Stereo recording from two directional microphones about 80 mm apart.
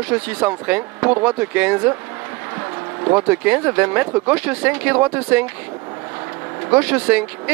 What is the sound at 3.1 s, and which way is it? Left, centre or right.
Speech, centre.